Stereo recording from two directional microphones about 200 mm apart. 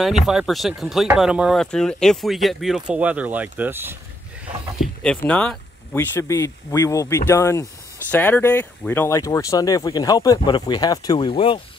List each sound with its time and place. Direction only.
0.0 s speech: centre (ahead or behind)
4.7 s speech: 5° left (ahead or behind); by 11.6 s 25° left (ahead or behind)